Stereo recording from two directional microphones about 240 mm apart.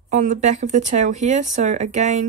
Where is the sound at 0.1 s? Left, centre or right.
Right.